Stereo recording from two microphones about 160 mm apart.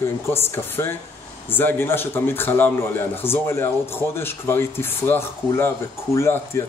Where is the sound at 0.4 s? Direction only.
15° left (ahead or behind).